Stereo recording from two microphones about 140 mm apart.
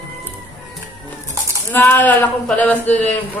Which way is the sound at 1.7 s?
15° left (ahead or behind).